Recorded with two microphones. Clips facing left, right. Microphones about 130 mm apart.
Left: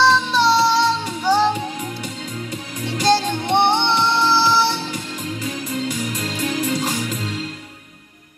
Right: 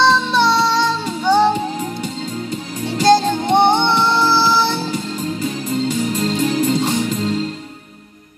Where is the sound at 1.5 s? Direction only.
35° right (ahead or behind).